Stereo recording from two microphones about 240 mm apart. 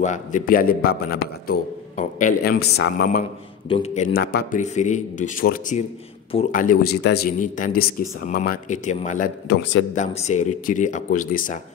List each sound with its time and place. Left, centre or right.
0.0 s a man's voice: left
3.6 s a man's voice: left
9.6 s a man's voice: left
9.9 s a man's voice: left